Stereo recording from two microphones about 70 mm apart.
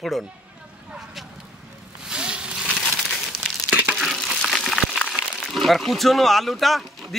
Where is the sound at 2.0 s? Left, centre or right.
Centre.